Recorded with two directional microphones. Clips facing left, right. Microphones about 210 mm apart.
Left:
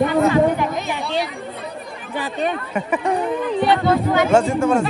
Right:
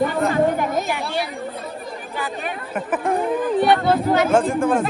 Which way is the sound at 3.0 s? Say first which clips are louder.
Right 3 dB; 55° right (ahead or behind).